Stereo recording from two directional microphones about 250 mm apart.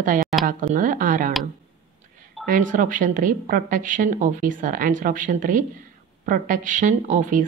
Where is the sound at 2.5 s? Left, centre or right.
Right.